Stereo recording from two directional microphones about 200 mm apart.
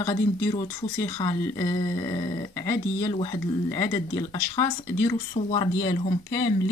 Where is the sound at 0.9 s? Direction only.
15° left (ahead or behind).